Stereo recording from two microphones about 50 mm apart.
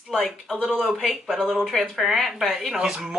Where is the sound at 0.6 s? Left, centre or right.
Centre.